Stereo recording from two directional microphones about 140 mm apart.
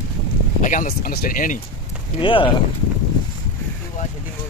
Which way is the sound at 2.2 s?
35° left (ahead or behind).